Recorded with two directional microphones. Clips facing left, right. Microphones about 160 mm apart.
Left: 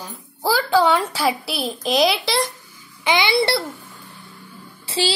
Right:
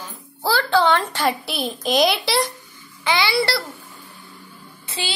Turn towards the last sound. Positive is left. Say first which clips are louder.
# left 7 dB
turn(degrees=30)  # may be behind; listen again after turning